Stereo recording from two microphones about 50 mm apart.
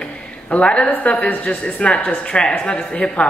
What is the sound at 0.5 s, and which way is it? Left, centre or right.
Speech, left.